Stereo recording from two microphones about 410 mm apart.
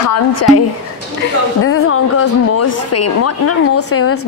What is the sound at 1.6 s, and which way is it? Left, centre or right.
Speech, left.